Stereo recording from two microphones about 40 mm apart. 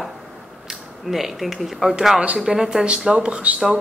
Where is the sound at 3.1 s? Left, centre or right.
Right.